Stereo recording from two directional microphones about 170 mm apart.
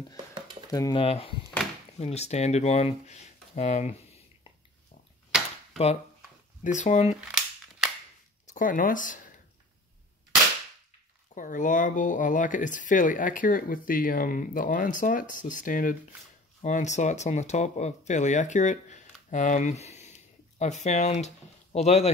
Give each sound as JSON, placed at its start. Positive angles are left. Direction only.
{"t": 0.7, "sound": "speech", "side_deg": 20}
{"t": 0.9, "sound": "speech", "side_deg": 35}
{"t": 6.6, "sound": "speech", "side_deg": 45}
{"t": 7.2, "sound": "a sound", "side_deg": -5}
{"t": 8.5, "sound": "speech", "side_deg": 50}
{"t": 11.3, "sound": "speech", "side_deg": 50}